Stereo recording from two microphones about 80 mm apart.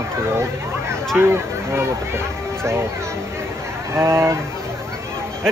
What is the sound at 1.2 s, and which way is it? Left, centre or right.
Speech, right.